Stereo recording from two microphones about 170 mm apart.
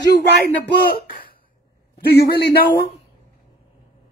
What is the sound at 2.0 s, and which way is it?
Speech, 70° left (ahead or behind).